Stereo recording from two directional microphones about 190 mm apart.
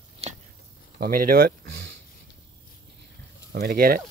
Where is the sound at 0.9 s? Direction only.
50° right (ahead or behind).